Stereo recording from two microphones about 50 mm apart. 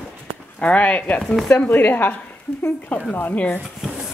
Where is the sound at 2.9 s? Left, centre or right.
Left.